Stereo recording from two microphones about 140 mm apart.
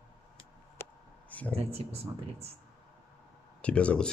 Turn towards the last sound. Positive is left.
turn(degrees=10)  # may be behind; listen again after turning